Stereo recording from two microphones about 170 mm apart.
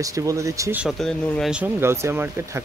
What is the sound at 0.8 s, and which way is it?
Speech, centre (ahead or behind).